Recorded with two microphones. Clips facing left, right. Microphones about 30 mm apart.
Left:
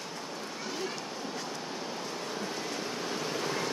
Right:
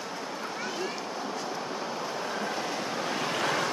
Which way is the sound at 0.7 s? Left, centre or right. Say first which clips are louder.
Right 3 dB; centre.